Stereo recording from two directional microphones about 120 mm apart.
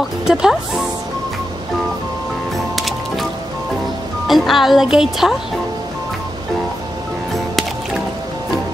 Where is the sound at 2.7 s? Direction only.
Centre (ahead or behind).